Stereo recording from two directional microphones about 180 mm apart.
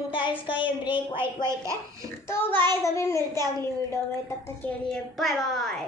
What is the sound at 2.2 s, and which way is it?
A child's voice, 15° left (ahead or behind).